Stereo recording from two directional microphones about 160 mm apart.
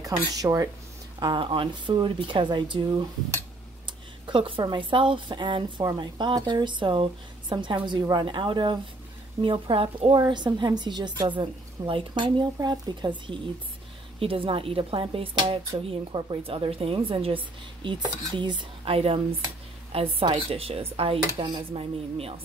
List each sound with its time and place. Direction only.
0.0 s speech: 20° right (ahead or behind)